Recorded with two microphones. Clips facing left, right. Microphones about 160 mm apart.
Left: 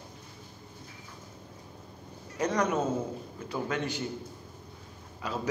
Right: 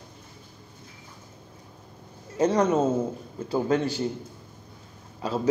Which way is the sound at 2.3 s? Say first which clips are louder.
Right 6 dB; 30° right (ahead or behind).